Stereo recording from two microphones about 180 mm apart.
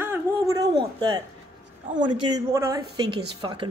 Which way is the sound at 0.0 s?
15° right (ahead or behind).